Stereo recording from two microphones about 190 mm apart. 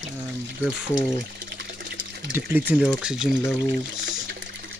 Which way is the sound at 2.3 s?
10° right (ahead or behind).